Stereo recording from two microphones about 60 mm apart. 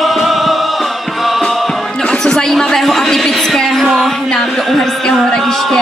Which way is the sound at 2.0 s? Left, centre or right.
Centre.